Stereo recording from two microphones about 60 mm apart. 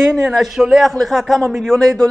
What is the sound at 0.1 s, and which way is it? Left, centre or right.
A man's voice, centre.